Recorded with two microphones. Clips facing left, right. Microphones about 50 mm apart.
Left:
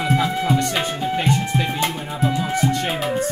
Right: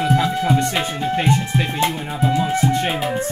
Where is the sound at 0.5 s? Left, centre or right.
Centre.